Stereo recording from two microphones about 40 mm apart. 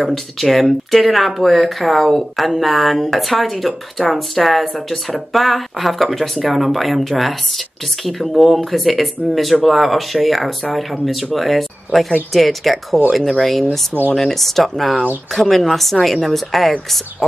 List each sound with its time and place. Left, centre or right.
0.0 s speech: centre